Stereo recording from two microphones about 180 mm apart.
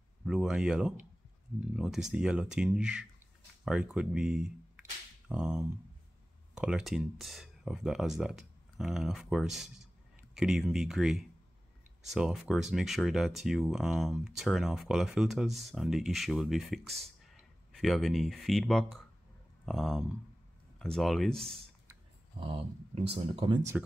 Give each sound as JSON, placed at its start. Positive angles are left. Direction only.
{"t": 0.2, "sound": "speech", "side_deg": -5}
{"t": 22.4, "sound": "speech", "side_deg": -30}